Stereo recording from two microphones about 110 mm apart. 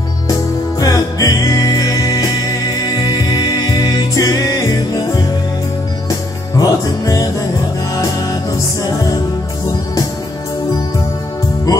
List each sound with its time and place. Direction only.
0.3 s music: 35° left (ahead or behind)
6.6 s music: 35° left (ahead or behind)
8.8 s music: 35° left (ahead or behind)